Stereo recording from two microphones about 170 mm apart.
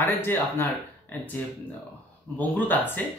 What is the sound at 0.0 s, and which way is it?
Speech, 15° left (ahead or behind).